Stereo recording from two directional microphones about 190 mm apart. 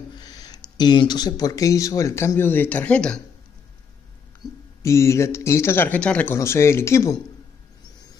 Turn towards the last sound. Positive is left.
turn(degrees=15)  # may be behind; listen again after turning